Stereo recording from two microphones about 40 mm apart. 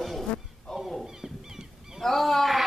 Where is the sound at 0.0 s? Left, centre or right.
Centre.